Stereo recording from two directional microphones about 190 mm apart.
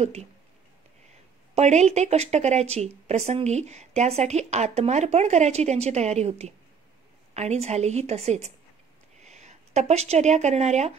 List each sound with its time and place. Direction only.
0.0 s speech: 35° right (ahead or behind)
1.5 s speech: 35° right (ahead or behind)